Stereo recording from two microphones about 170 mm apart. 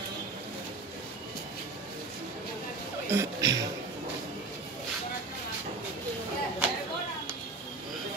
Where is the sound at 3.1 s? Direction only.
15° right (ahead or behind).